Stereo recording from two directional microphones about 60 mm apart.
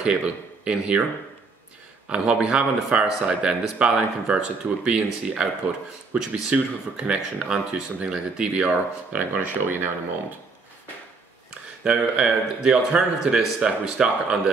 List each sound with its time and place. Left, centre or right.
0.0 s speech: centre
2.0 s a man's voice: centre
11.8 s speech: centre